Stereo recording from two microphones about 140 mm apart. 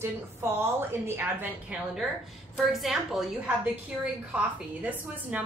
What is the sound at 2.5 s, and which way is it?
A woman's voice, centre (ahead or behind).